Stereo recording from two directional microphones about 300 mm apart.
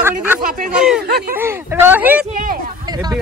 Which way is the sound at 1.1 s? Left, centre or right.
Right.